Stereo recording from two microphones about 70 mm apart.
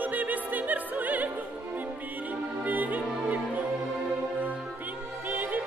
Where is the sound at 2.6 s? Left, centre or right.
Right.